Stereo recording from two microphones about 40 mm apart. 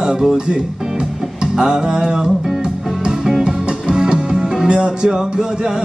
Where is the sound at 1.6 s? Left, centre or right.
Centre.